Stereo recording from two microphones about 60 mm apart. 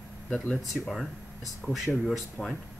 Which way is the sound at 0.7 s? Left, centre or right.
Centre.